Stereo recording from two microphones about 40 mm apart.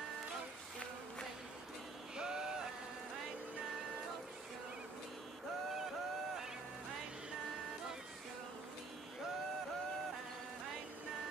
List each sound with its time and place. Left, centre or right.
2.1 s music: centre